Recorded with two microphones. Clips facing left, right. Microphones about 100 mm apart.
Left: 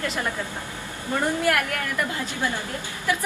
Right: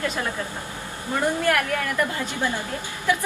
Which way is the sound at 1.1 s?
20° right (ahead or behind).